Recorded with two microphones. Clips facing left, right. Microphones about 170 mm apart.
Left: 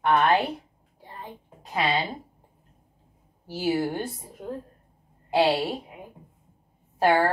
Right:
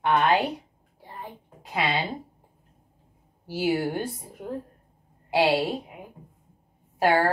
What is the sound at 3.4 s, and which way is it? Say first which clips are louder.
Speech: even; 15° right (ahead or behind).